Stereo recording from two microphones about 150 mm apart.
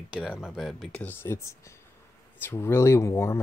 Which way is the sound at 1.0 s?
15° left (ahead or behind).